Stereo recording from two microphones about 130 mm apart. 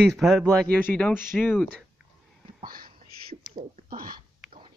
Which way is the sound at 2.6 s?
90° right.